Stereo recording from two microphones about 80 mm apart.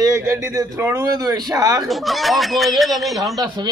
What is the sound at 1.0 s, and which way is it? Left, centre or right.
Speech, right.